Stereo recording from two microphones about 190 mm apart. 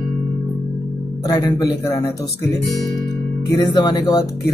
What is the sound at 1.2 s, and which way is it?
Speech, 20° left (ahead or behind).